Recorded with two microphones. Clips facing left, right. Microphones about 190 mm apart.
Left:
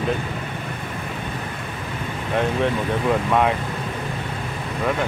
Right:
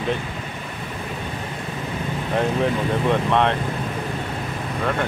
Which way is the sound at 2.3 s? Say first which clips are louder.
Even; centre (ahead or behind).